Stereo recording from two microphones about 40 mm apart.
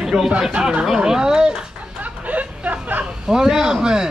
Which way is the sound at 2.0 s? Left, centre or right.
Right.